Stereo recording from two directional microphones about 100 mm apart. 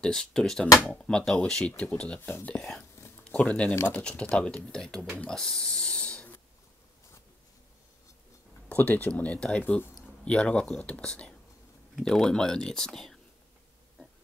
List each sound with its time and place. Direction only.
0.0 s speech: 10° left (ahead or behind)
5.2 s a sound: 5° left (ahead or behind)
8.6 s speech: 15° left (ahead or behind)